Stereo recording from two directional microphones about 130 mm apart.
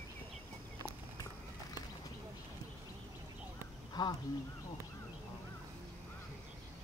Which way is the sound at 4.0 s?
30° left (ahead or behind).